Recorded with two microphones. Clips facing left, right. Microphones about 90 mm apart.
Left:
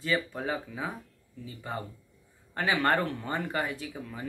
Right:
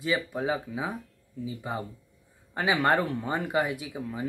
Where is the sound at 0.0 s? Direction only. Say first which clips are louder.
Right 2 dB; 10° right (ahead or behind).